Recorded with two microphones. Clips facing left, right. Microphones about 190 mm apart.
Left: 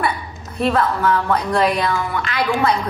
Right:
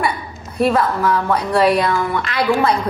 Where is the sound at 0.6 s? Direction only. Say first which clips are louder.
Right 2 dB; 5° right (ahead or behind).